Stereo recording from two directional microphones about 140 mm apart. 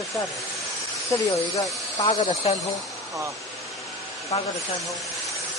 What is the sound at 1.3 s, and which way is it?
Speech, 25° left (ahead or behind).